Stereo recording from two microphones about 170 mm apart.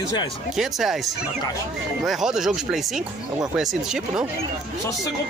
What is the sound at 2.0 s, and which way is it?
Speech, centre (ahead or behind).